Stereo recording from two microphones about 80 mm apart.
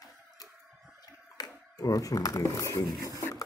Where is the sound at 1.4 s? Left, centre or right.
Left.